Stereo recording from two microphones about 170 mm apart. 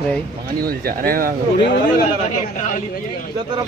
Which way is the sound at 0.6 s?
60° right (ahead or behind).